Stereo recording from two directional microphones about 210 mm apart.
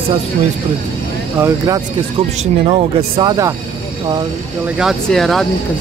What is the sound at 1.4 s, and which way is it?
Speech, 20° right (ahead or behind).